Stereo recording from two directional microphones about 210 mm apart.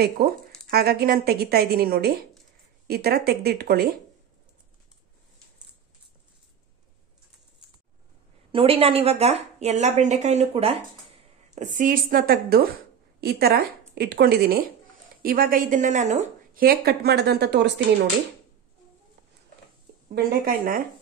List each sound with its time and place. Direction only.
0.7 s a woman's voice: 50° right (ahead or behind)
8.5 s a woman's voice: 25° right (ahead or behind); by 17.6 s 50° right (ahead or behind)
20.1 s a woman's voice: 45° right (ahead or behind)